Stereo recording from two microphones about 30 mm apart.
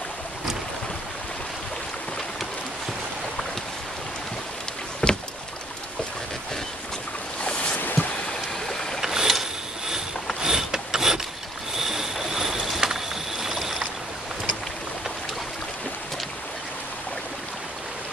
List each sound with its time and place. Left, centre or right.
5.0 s rowboat: left
7.7 s a sound: left
8.6 s boat: centre
9.0 s mechanisms: centre
10.4 s pulleys: centre
11.8 s vehicle: centre